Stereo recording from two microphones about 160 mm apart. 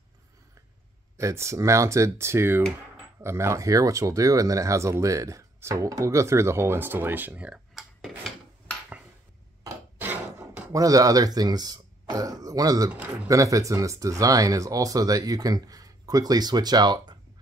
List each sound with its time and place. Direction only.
1.1 s speech: 15° right (ahead or behind); by 8.7 s centre (ahead or behind)
9.6 s a sound: 15° right (ahead or behind)
12.9 s speech: 10° right (ahead or behind); by 17.2 s 25° right (ahead or behind)